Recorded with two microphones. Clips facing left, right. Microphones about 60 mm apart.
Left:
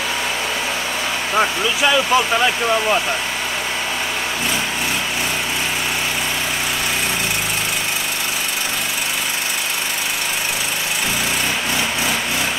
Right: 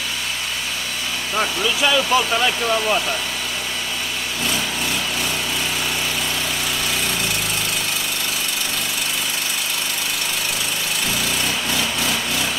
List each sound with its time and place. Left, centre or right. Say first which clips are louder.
1.3 s speech: left 3 dB; centre
11.7 s vehicle: left 2 dB; centre